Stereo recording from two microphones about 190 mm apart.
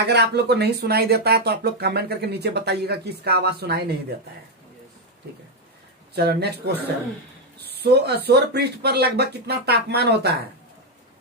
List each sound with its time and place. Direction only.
0.0 s speech: 60° right (ahead or behind)
6.1 s speech: 55° right (ahead or behind)
7.7 s speech: 60° right (ahead or behind)